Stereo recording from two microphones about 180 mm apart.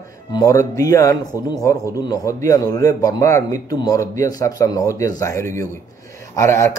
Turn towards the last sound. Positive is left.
turn(degrees=15)  # may be behind; listen again after turning